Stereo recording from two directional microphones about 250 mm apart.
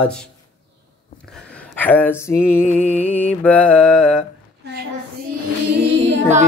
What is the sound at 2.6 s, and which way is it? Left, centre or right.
Music, left.